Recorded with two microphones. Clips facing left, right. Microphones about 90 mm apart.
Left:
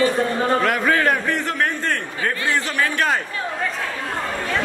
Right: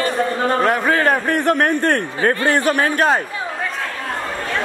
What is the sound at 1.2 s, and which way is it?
A man's voice, 55° right (ahead or behind).